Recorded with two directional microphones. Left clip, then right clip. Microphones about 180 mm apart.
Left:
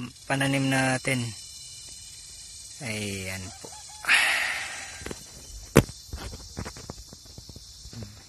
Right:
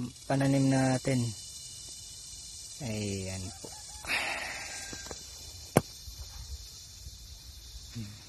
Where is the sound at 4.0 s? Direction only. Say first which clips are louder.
Left 11 dB; 10° right (ahead or behind).